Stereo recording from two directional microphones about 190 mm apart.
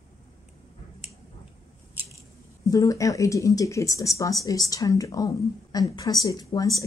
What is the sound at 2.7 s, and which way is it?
Speech, 15° left (ahead or behind).